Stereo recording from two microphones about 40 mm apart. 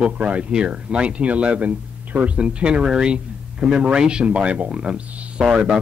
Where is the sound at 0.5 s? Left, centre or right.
Right.